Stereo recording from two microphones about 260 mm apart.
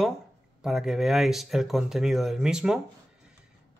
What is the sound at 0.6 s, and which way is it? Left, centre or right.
Speech, centre.